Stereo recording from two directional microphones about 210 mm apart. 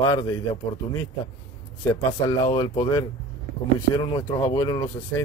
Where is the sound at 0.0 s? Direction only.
15° left (ahead or behind).